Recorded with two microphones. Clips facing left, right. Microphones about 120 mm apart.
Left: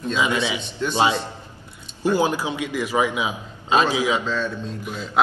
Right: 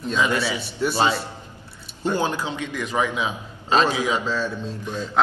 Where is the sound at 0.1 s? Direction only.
15° left (ahead or behind).